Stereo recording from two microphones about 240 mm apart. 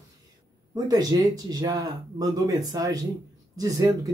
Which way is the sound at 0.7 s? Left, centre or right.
Centre.